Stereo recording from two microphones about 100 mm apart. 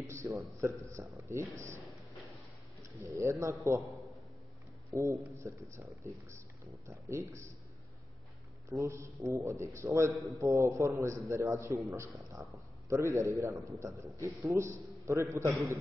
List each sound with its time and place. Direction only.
0.2 s a man's voice: 30° right (ahead or behind)
2.8 s a man's voice: 30° right (ahead or behind)
4.9 s a man's voice: 30° right (ahead or behind)
6.9 s a man's voice: 30° right (ahead or behind)
8.6 s a man's voice: 30° right (ahead or behind)